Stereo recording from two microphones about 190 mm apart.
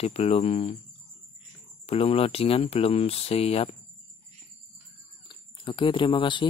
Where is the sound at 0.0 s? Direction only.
35° left (ahead or behind).